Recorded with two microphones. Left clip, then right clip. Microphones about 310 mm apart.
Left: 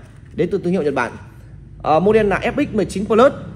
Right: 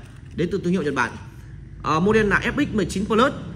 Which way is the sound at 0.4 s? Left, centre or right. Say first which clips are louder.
Left 5 dB; centre.